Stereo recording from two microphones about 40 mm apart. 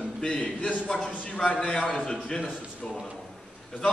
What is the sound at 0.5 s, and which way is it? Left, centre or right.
Speech, left.